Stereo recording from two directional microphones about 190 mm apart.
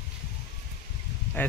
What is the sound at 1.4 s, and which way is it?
Speech, 10° left (ahead or behind).